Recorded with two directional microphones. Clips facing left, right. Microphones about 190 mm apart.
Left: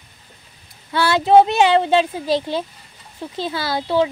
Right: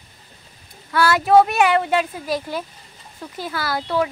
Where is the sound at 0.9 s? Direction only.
25° left (ahead or behind).